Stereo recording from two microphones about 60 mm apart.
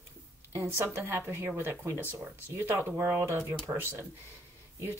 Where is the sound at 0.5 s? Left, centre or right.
Right.